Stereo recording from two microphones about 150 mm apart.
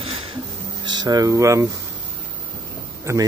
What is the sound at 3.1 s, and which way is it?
Speech, 20° right (ahead or behind).